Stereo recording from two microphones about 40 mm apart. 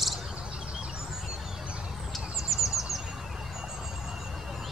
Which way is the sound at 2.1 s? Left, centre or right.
Centre.